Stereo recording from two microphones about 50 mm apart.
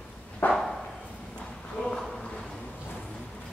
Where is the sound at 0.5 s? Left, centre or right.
Centre.